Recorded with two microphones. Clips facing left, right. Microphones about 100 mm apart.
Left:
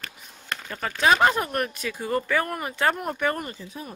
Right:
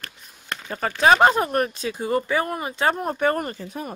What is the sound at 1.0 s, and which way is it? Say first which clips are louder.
Speech: right 4 dB; 30° right (ahead or behind).